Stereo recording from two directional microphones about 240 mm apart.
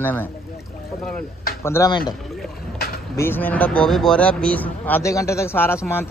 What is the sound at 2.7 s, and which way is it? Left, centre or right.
Vehicle, left.